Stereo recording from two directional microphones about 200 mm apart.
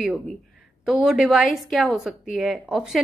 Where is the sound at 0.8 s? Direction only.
5° right (ahead or behind).